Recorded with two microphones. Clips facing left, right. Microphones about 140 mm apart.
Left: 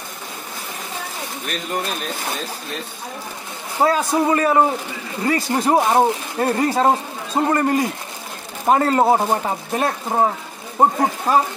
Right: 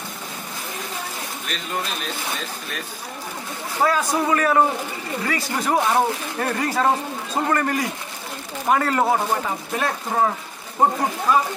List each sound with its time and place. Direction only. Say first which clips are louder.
3.8 s speech: left 3 dB; 30° left (ahead or behind)
11.3 s speech: left 2 dB; 40° left (ahead or behind)